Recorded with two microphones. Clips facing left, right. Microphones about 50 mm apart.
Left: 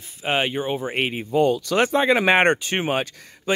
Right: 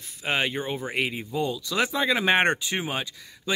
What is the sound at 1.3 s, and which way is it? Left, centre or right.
Speech, left.